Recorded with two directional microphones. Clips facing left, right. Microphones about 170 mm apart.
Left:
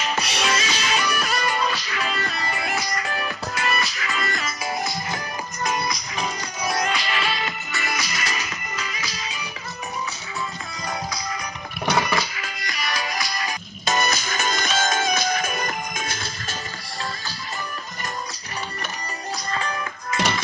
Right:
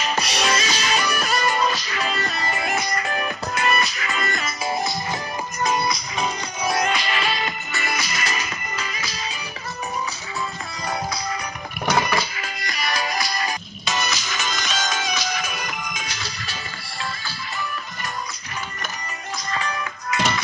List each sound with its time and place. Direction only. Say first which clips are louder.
0.0 s music: right 2 dB; 40° right (ahead or behind)
2.8 s music: right 2 dB; 25° right (ahead or behind)
3.2 s music: right 3 dB; 45° right (ahead or behind)
4.5 s music: right 2 dB; 25° right (ahead or behind)
12.4 s music: right 2 dB; 35° right (ahead or behind)
13.8 s music: left 3 dB; 50° left (ahead or behind)
19.3 s music: right 1 dB; 35° left (ahead or behind)